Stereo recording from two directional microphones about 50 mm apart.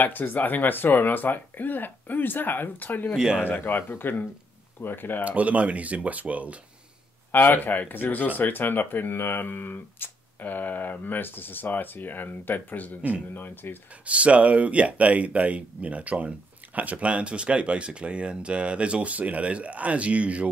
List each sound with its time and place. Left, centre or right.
0.0 s speech: left
3.2 s speech: centre
3.4 s speech: left
5.2 s speech: right
7.3 s speech: left
14.0 s speech: right